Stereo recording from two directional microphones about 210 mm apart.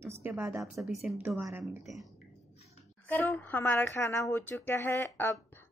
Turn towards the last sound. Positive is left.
turn(degrees=10)  # may be behind; listen again after turning